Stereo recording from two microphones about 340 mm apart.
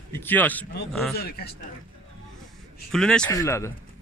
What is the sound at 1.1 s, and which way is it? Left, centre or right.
Speech, left.